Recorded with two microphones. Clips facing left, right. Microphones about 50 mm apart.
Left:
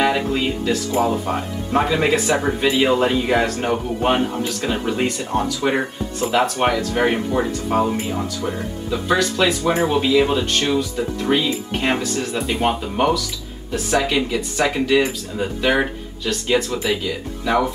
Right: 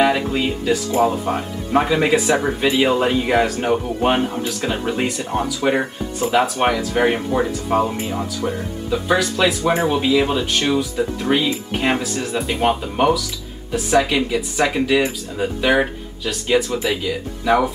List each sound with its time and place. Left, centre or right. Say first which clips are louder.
0.0 s speech: right 1 dB; centre